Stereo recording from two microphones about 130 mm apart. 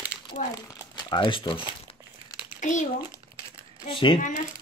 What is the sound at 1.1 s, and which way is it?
Speech, 35° left (ahead or behind).